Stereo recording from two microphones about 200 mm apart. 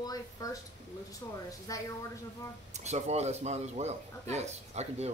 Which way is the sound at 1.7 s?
15° left (ahead or behind).